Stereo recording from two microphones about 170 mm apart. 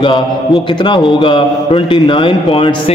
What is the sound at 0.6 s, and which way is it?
A man's voice, 30° left (ahead or behind).